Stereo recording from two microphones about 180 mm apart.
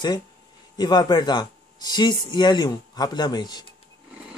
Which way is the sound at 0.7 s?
25° left (ahead or behind).